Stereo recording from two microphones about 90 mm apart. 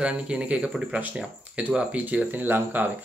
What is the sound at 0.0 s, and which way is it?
Speech, 10° right (ahead or behind).